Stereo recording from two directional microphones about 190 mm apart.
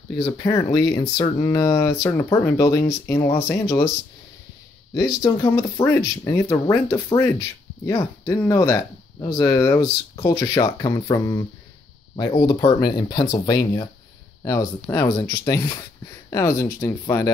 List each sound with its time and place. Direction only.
0.2 s speech: 20° left (ahead or behind)
4.9 s speech: 20° left (ahead or behind)